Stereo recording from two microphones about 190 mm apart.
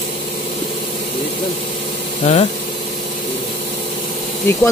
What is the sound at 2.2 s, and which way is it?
Speech, 35° left (ahead or behind).